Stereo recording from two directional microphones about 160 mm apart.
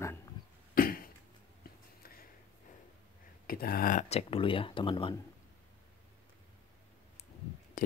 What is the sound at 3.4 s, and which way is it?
Speech, 70° left (ahead or behind).